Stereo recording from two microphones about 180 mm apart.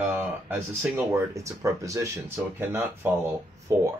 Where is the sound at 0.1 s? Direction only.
5° right (ahead or behind).